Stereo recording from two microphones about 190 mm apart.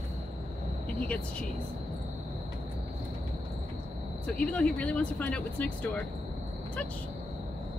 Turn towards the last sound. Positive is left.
turn(degrees=5)  # may be behind; listen again after turning